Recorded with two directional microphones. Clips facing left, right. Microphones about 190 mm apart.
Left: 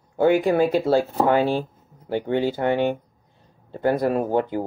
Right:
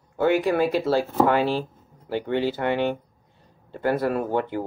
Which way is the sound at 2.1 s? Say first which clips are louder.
Left 2 dB; 50° left (ahead or behind).